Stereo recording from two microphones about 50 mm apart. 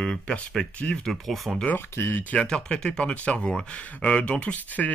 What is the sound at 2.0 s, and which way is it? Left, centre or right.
Speech, left.